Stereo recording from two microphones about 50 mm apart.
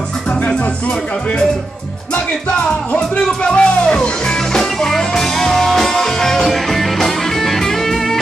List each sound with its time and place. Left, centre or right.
3.0 s speech: centre
4.6 s music: centre